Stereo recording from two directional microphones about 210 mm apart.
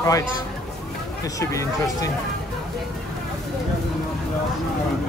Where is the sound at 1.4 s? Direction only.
15° left (ahead or behind).